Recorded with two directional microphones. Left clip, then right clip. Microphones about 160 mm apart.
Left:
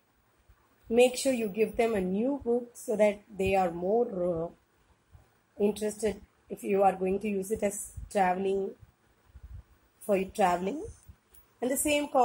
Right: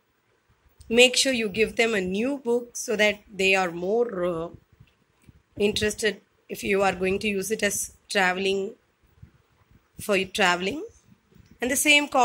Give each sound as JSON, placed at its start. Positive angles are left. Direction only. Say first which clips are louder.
{"t": 0.8, "sound": "a woman's voice", "louder": "right 5 dB", "side_deg": -10}
{"t": 5.6, "sound": "a woman's voice", "louder": "right 5 dB", "side_deg": -10}
{"t": 10.0, "sound": "a woman's voice", "louder": "right 4 dB", "side_deg": -10}